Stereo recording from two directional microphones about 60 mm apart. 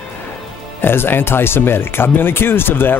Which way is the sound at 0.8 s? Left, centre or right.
Left.